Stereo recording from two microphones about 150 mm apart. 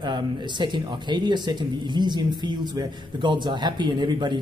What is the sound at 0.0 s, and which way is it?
Speech, 30° right (ahead or behind).